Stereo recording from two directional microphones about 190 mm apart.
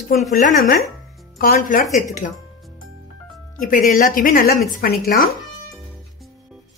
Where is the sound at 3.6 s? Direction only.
45° left (ahead or behind).